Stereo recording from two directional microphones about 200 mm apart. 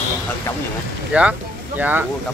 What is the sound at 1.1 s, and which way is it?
Speech, 5° right (ahead or behind).